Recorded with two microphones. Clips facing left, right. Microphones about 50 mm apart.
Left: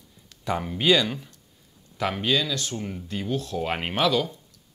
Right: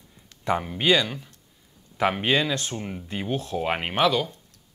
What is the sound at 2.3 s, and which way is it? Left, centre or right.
Speech, right.